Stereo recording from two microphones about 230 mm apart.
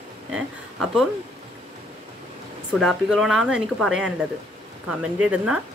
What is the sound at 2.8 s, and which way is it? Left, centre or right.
Speech, centre.